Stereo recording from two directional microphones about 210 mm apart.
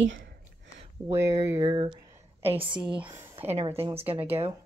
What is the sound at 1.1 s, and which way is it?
Speech, 15° right (ahead or behind).